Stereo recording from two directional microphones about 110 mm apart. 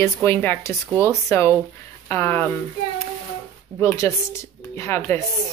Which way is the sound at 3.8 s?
25° left (ahead or behind).